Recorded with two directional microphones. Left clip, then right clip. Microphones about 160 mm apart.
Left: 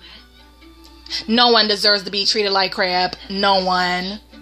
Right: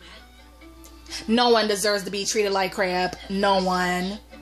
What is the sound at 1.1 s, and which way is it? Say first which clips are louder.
Speech: left 5 dB; 5° right (ahead or behind).